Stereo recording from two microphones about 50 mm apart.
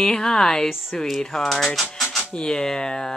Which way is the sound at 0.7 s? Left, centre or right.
Centre.